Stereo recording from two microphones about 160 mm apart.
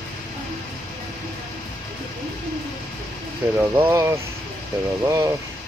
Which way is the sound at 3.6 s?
15° right (ahead or behind).